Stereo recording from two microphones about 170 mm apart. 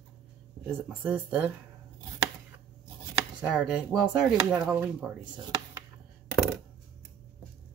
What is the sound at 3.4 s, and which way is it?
Speech, 5° right (ahead or behind).